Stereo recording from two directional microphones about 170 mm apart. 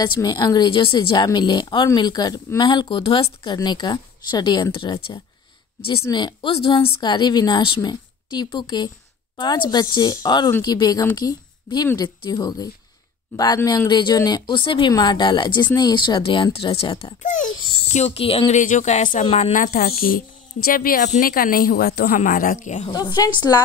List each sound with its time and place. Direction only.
0.0 s a woman's voice: 25° left (ahead or behind)
17.2 s a woman's voice: 50° left (ahead or behind)
22.8 s a woman's voice: 25° left (ahead or behind)